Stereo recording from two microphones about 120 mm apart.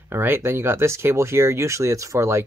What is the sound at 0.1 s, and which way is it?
Speech, 20° right (ahead or behind).